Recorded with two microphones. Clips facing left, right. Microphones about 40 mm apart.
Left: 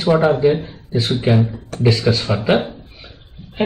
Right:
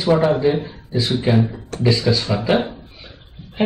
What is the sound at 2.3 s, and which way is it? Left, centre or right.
Speech, left.